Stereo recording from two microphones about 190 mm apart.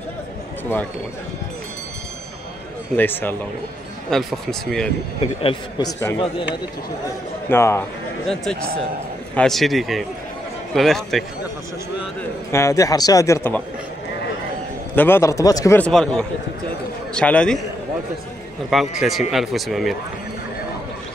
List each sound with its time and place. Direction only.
3.0 s speech: 10° left (ahead or behind)
5.4 s speech: 25° left (ahead or behind)
5.9 s speech: 10° left (ahead or behind)
7.4 s speech: 15° left (ahead or behind)
9.3 s speech: 5° left (ahead or behind)
12.2 s speech: 15° left (ahead or behind)
15.0 s speech: 10° left (ahead or behind)
15.9 s speech: 5° left (ahead or behind)
18.7 s speech: centre (ahead or behind)